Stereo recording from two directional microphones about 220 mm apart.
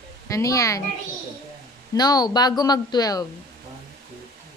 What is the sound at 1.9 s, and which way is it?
A woman's voice, 15° left (ahead or behind).